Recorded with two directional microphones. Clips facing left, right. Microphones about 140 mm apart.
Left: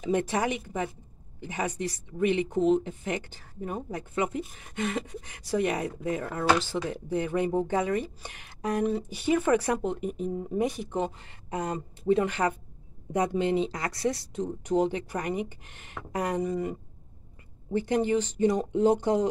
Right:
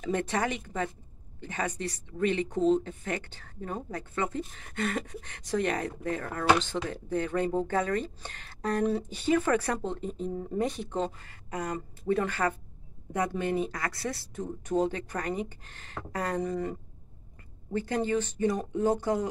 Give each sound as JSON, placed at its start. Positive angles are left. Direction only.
{"t": 0.0, "sound": "speech", "side_deg": 10}
{"t": 8.8, "sound": "speech", "side_deg": 0}
{"t": 17.7, "sound": "speech", "side_deg": 15}